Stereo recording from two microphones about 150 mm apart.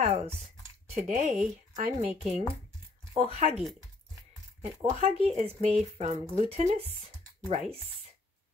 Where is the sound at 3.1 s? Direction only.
45° right (ahead or behind).